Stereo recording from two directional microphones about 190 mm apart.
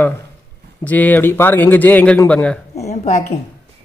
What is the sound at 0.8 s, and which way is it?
Speech, 10° left (ahead or behind).